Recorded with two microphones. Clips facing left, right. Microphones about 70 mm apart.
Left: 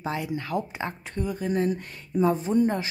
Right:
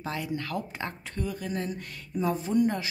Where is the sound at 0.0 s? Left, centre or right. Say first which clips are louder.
Left 3 dB; left.